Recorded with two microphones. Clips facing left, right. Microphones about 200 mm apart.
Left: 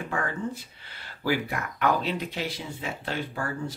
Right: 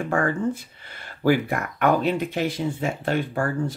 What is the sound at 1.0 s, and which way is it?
Speech, 50° right (ahead or behind).